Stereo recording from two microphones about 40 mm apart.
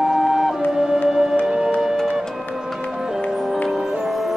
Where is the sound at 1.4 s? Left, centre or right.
Right.